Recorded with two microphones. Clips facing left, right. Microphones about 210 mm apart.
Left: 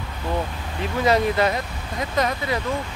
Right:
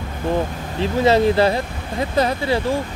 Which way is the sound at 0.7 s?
30° right (ahead or behind).